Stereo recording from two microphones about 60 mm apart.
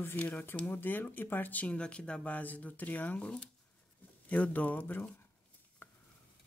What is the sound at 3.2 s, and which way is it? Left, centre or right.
Speech, centre.